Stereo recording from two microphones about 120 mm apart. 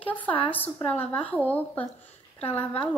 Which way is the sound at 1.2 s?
15° left (ahead or behind).